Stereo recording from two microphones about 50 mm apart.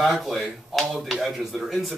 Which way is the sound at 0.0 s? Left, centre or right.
Centre.